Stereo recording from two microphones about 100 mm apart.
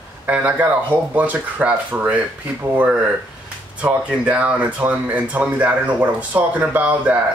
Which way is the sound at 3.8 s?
15° right (ahead or behind).